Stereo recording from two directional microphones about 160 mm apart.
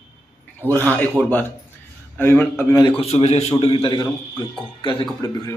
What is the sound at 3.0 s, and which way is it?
A man's voice, 40° left (ahead or behind).